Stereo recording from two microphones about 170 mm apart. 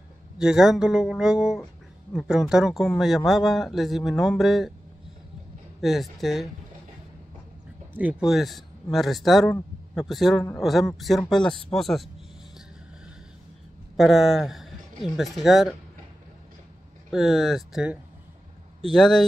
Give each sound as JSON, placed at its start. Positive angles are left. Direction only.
{"t": 0.4, "sound": "speech", "side_deg": -5}
{"t": 5.8, "sound": "speech", "side_deg": 0}
{"t": 7.9, "sound": "speech", "side_deg": -10}
{"t": 13.9, "sound": "speech", "side_deg": 0}
{"t": 17.1, "sound": "speech", "side_deg": 0}